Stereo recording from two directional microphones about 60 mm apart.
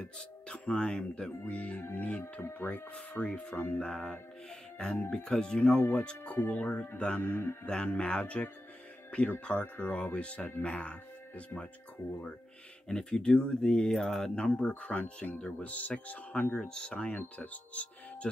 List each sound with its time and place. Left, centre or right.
0.0 s speech: centre
3.8 s speech: centre
7.6 s speech: centre
12.8 s speech: centre